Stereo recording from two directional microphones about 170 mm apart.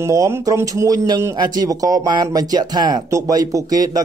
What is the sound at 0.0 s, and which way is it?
Speech, 15° right (ahead or behind).